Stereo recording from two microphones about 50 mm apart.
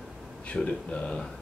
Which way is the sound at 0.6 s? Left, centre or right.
Centre.